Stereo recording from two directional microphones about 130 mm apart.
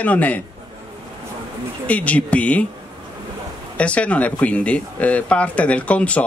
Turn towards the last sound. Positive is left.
turn(degrees=10)  # may be behind; listen again after turning